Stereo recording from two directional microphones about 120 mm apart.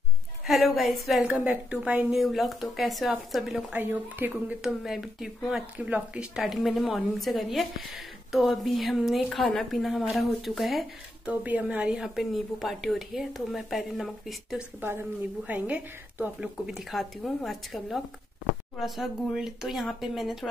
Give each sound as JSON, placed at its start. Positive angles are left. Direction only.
{"t": 0.5, "sound": "speech", "side_deg": 0}
{"t": 1.4, "sound": "speech", "side_deg": -10}
{"t": 3.8, "sound": "a woman's voice", "side_deg": -15}
{"t": 4.6, "sound": "speech", "side_deg": -5}
{"t": 11.2, "sound": "speech", "side_deg": -10}
{"t": 14.8, "sound": "a woman's voice", "side_deg": -15}